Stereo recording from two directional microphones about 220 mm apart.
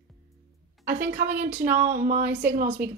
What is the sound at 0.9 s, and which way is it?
A woman's voice, 45° right (ahead or behind).